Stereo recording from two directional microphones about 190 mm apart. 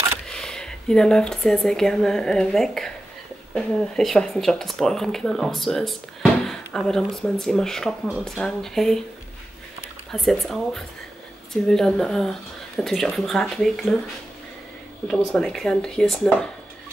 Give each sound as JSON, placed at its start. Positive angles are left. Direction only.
{"t": 0.3, "sound": "speech", "side_deg": 5}
{"t": 10.1, "sound": "speech", "side_deg": 0}
{"t": 15.0, "sound": "speech", "side_deg": 0}